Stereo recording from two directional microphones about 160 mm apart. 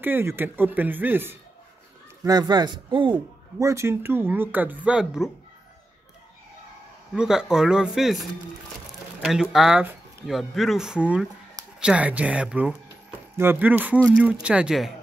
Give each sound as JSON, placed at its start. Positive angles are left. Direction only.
{"t": 0.0, "sound": "a man's voice", "side_deg": -15}
{"t": 2.2, "sound": "a man's voice", "side_deg": -25}
{"t": 7.2, "sound": "a man's voice", "side_deg": -5}